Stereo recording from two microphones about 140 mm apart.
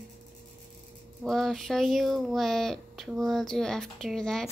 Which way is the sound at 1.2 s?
Centre (ahead or behind).